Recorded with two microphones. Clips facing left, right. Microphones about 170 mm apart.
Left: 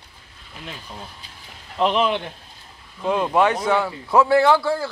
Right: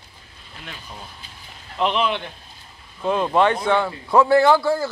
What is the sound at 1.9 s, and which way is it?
Speech, 40° left (ahead or behind).